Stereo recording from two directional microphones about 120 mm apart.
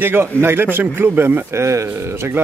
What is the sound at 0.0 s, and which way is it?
A man's voice, 15° right (ahead or behind).